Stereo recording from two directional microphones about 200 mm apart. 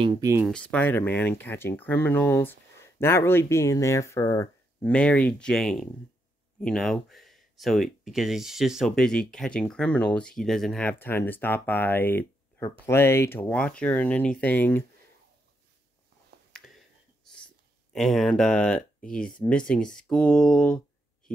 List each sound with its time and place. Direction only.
0.0 s speech: 15° right (ahead or behind)
0.5 s speech: 5° left (ahead or behind)
16.5 s a sound: centre (ahead or behind)
17.9 s speech: centre (ahead or behind)